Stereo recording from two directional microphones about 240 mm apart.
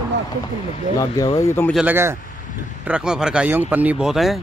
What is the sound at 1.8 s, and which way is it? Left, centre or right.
Speech, centre.